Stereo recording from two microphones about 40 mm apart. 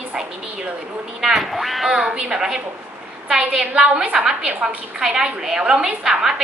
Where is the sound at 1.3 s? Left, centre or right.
Centre.